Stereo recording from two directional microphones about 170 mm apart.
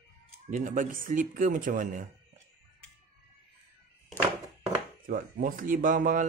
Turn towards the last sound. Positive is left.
turn(degrees=-55)  # may be behind; listen again after turning